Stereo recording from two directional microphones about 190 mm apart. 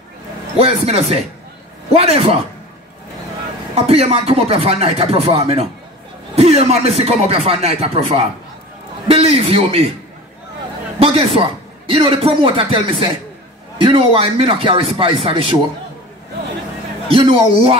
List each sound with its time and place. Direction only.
0.6 s speech: 30° right (ahead or behind)
3.7 s speech: 30° right (ahead or behind)
11.0 s speech: 30° right (ahead or behind)
17.1 s speech: 30° right (ahead or behind)